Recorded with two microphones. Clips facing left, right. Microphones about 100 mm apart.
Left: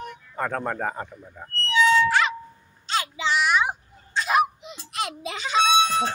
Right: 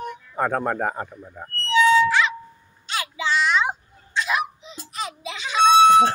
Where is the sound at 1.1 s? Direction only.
20° right (ahead or behind).